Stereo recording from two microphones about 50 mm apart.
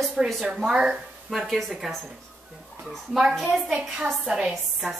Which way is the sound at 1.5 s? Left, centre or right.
Centre.